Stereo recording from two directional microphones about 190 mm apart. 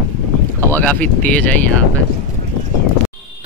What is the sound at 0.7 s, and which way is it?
Speech, 10° left (ahead or behind).